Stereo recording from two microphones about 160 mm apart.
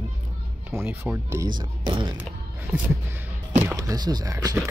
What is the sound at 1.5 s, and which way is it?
Speech, 30° right (ahead or behind).